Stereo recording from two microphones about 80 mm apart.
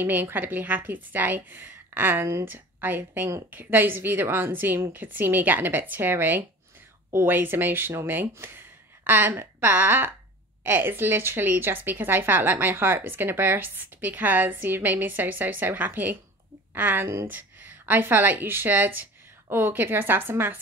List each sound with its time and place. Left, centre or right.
0.0 s speech: right